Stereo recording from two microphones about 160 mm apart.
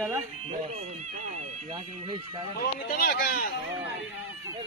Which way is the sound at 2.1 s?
25° right (ahead or behind).